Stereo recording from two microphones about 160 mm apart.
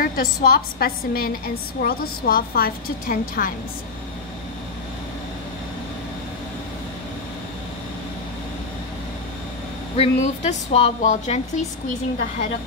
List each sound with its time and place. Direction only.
0.0 s a woman's voice: 65° left (ahead or behind)
9.9 s speech: 45° left (ahead or behind)